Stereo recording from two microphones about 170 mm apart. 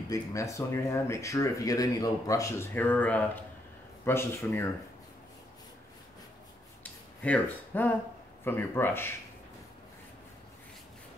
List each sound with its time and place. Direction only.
0.1 s speech: 20° left (ahead or behind)
6.8 s a sound: 10° left (ahead or behind)
8.5 s speech: 10° left (ahead or behind)